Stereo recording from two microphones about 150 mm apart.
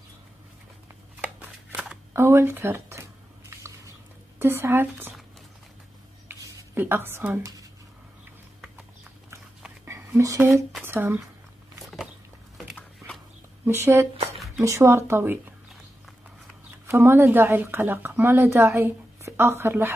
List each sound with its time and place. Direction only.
1.4 s shuffling cards: 10° right (ahead or behind)
4.4 s speech: 15° right (ahead or behind)
6.2 s a sound: 15° right (ahead or behind)
9.8 s whispering: 20° right (ahead or behind)
10.8 s speech: 15° right (ahead or behind)
11.8 s a sound: centre (ahead or behind)
13.7 s speech: 15° right (ahead or behind)
14.3 s a sound: centre (ahead or behind)
14.6 s speech: 20° right (ahead or behind)
16.8 s speech: 15° right (ahead or behind)